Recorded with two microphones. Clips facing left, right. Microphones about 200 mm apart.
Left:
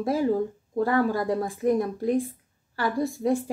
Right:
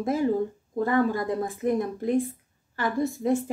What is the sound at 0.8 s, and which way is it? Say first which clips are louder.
Speech: even; 20° right (ahead or behind).